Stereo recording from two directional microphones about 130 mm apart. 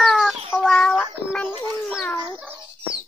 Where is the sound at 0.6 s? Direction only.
5° left (ahead or behind).